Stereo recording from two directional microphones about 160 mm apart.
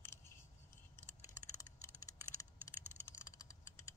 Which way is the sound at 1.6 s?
20° left (ahead or behind).